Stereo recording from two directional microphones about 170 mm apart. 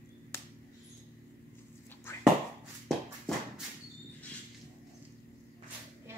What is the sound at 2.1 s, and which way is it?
Whispering, 15° left (ahead or behind).